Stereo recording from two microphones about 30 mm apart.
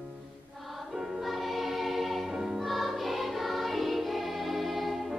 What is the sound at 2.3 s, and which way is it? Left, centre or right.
Music, centre.